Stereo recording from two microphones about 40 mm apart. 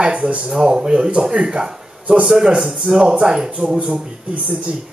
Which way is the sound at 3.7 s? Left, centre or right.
Right.